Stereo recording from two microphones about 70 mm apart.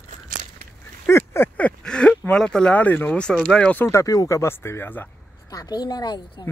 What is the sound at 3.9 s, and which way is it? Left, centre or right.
Speech, left.